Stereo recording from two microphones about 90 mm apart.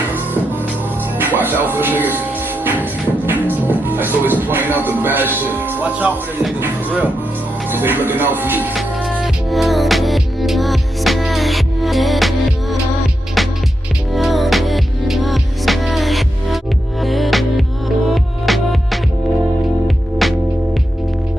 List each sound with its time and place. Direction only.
1.1 s speech: 20° right (ahead or behind)
2.6 s music: 20° right (ahead or behind)
7.7 s speech: 25° right (ahead or behind)
8.7 s music: centre (ahead or behind)
14.1 s music: centre (ahead or behind)